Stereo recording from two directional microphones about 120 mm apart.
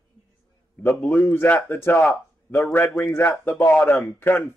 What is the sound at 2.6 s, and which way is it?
A man's voice, 15° left (ahead or behind).